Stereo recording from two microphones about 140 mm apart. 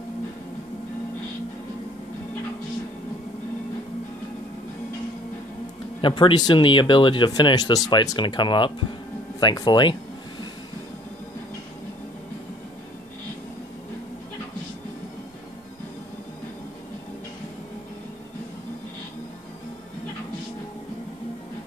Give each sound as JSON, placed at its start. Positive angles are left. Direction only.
{"t": 5.9, "sound": "speech", "side_deg": 35}